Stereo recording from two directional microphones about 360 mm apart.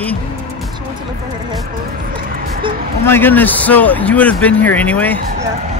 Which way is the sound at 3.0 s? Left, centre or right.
Centre.